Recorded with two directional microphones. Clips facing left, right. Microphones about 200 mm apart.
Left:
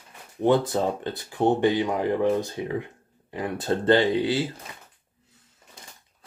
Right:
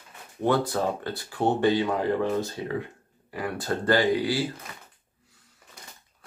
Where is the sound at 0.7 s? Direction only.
20° left (ahead or behind).